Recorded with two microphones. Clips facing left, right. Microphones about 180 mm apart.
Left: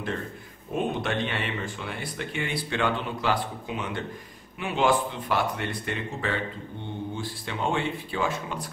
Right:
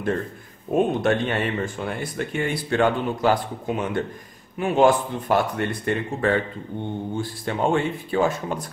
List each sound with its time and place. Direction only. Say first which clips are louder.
0.7 s speech: right 7 dB; 45° right (ahead or behind)